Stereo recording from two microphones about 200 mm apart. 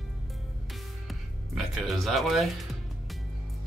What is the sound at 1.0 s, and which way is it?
Music, centre (ahead or behind).